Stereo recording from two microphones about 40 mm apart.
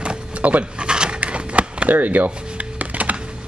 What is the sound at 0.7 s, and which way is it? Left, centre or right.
Dog, right.